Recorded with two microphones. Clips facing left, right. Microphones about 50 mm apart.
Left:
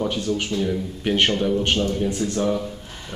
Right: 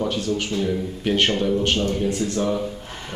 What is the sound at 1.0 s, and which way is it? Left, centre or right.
Speech, centre.